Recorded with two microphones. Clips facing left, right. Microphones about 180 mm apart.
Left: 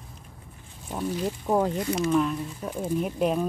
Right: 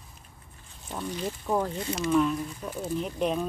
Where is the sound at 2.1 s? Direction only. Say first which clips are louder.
Right 4 dB; 5° left (ahead or behind).